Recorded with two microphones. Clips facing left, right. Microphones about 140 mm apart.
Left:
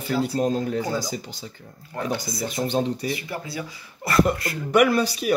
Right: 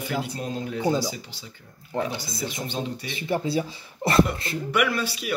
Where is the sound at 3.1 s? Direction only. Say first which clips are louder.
Right 3 dB; 25° right (ahead or behind).